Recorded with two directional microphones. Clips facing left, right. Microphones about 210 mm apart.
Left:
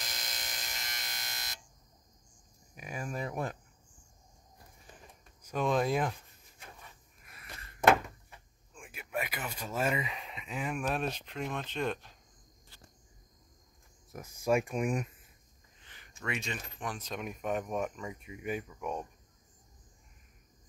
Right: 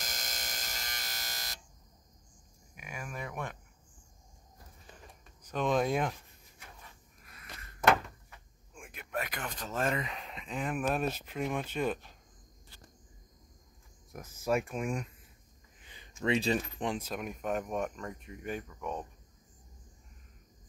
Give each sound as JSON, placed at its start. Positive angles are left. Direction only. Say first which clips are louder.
{"t": 0.0, "sound": "a sound", "louder": "right 1 dB", "side_deg": -45}
{"t": 2.7, "sound": "speech", "louder": "left 4 dB", "side_deg": 35}
{"t": 5.4, "sound": "speech", "louder": "even", "side_deg": 5}
{"t": 7.3, "sound": "a sound", "louder": "left 1 dB", "side_deg": 25}
{"t": 8.7, "sound": "speech", "louder": "left 1 dB", "side_deg": 5}
{"t": 14.2, "sound": "speech", "louder": "left 2 dB", "side_deg": 10}
{"t": 15.8, "sound": "a sound", "louder": "right 3 dB", "side_deg": -15}
{"t": 16.2, "sound": "speech", "louder": "right 9 dB", "side_deg": -30}
{"t": 17.0, "sound": "speech", "louder": "right 1 dB", "side_deg": 0}